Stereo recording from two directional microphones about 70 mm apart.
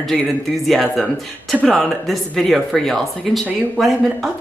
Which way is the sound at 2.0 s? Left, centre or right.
Centre.